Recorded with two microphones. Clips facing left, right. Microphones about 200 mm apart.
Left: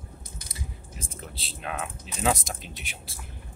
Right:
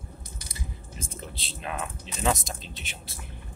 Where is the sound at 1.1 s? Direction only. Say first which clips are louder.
Right 1 dB; centre (ahead or behind).